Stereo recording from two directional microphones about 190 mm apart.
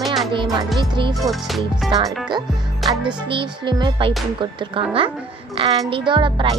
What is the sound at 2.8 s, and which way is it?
Music, centre (ahead or behind).